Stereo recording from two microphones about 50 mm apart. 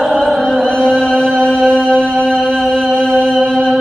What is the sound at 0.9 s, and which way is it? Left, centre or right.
Chant, centre.